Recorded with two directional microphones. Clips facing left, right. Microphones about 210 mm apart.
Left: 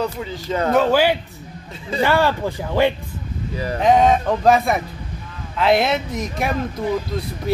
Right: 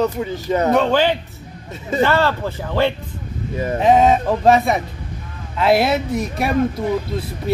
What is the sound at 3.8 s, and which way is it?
Speech, 5° right (ahead or behind).